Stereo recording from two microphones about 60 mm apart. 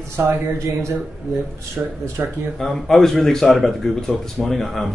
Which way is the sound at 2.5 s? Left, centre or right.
Centre.